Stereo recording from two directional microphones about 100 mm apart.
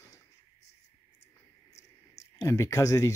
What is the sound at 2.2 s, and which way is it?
Speech, 30° left (ahead or behind).